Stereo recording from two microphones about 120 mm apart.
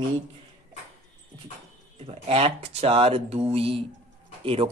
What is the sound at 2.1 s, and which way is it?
Speech, 60° right (ahead or behind).